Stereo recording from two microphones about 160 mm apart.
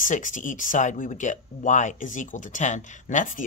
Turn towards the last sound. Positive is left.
turn(degrees=50)  # may be behind; listen again after turning